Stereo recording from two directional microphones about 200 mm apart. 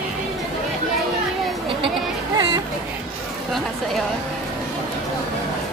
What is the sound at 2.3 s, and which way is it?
Music, 20° right (ahead or behind).